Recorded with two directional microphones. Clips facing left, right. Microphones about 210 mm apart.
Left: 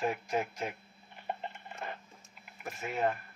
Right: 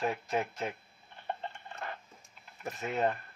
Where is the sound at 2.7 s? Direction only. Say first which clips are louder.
Right 1 dB; 20° right (ahead or behind).